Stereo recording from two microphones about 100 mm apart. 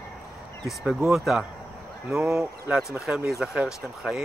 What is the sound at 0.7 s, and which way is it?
Speech, centre (ahead or behind).